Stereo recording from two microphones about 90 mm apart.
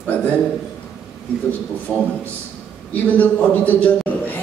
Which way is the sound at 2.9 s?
20° left (ahead or behind).